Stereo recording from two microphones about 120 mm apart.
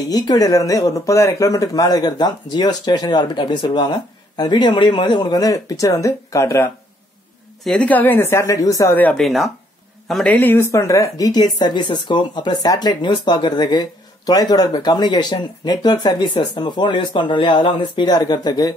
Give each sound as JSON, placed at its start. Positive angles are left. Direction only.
{"t": 0.1, "sound": "speech", "side_deg": 30}
{"t": 7.6, "sound": "speech", "side_deg": 5}
{"t": 9.1, "sound": "speech", "side_deg": 0}
{"t": 10.3, "sound": "speech", "side_deg": 15}